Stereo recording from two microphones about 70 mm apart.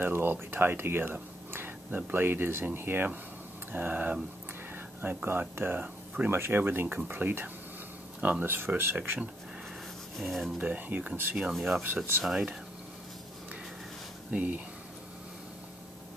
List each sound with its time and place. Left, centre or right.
0.0 s speech: right
10.1 s speech: centre
10.6 s speech: right
11.3 s speech: centre
14.3 s speech: right